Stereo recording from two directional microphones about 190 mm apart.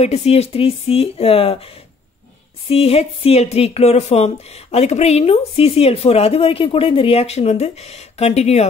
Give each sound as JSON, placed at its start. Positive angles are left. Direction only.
{"t": 0.0, "sound": "speech", "side_deg": 35}
{"t": 2.7, "sound": "speech", "side_deg": 30}